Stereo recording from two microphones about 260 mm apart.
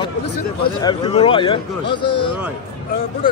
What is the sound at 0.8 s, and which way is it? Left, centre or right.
Speech, centre.